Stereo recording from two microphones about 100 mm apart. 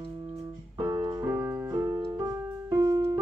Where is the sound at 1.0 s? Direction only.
35° right (ahead or behind).